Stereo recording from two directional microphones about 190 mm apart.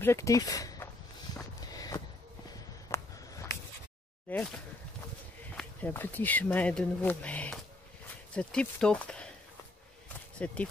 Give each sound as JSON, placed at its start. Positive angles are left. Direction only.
{"t": 0.0, "sound": "speech", "side_deg": 15}
{"t": 1.8, "sound": "a sound", "side_deg": 20}
{"t": 5.6, "sound": "speech", "side_deg": 10}
{"t": 10.4, "sound": "speech", "side_deg": 5}